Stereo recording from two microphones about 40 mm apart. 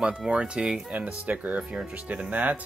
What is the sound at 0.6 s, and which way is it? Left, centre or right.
Speech, centre.